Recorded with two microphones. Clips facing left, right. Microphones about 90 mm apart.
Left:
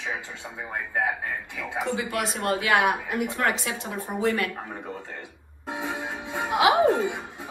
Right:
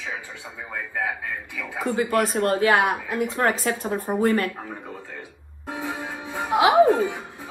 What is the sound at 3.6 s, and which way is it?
Speech, 45° right (ahead or behind).